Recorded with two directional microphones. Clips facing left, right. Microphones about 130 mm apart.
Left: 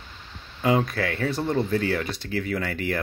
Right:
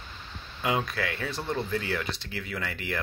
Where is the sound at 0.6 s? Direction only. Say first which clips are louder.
Left 6 dB; 35° left (ahead or behind).